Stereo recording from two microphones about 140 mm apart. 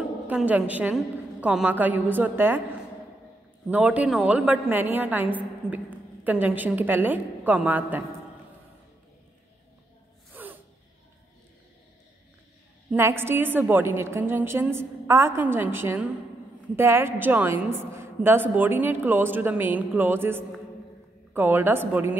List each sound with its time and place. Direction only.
0.3 s a woman's voice: 10° right (ahead or behind)
3.6 s a woman's voice: 10° right (ahead or behind)
10.3 s music: 15° right (ahead or behind)
12.9 s a woman's voice: 15° right (ahead or behind)